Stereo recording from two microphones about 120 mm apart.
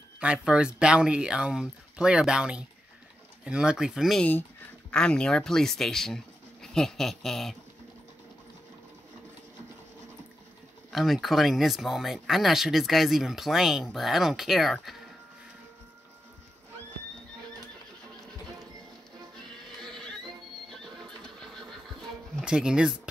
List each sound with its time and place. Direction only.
0.2 s speech: 10° right (ahead or behind)
4.2 s speech: 15° left (ahead or behind)
10.9 s speech: centre (ahead or behind)
19.8 s music: 5° left (ahead or behind)
20.7 s horse: 5° left (ahead or behind)
22.4 s speech: 5° right (ahead or behind)